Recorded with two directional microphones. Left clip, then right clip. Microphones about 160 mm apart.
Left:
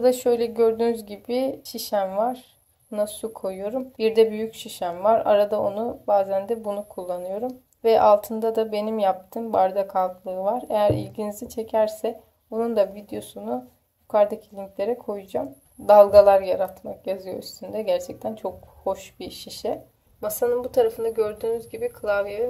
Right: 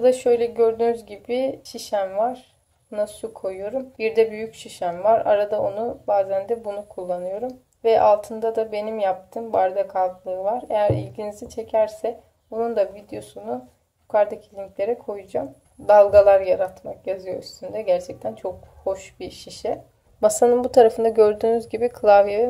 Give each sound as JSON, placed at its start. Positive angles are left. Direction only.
{"t": 0.0, "sound": "speech", "side_deg": 20}
{"t": 20.2, "sound": "speech", "side_deg": -25}